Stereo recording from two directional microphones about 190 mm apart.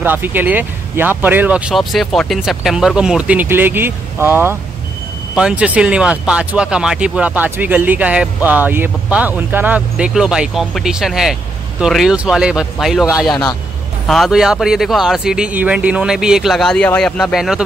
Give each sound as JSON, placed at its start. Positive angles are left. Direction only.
{"t": 0.0, "sound": "speech", "side_deg": -10}
{"t": 13.3, "sound": "a man's voice", "side_deg": 20}
{"t": 14.0, "sound": "speech", "side_deg": 0}